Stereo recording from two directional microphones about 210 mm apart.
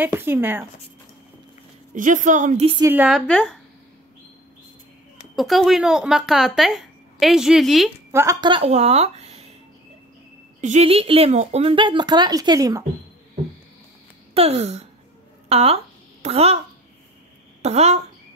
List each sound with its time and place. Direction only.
0.0 s speech: 10° right (ahead or behind)
2.0 s a woman's voice: 35° right (ahead or behind)
2.8 s speech: 10° right (ahead or behind)
5.3 s speech: centre (ahead or behind)
8.1 s speech: 15° right (ahead or behind); by 9.5 s 30° right (ahead or behind)
10.6 s speech: 30° right (ahead or behind)
14.3 s a woman's voice: 30° right (ahead or behind)
15.4 s a sound: 30° right (ahead or behind)
17.6 s speech: 30° right (ahead or behind)